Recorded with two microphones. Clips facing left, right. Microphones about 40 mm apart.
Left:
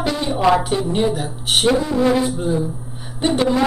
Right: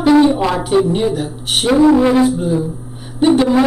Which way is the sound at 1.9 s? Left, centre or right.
Right.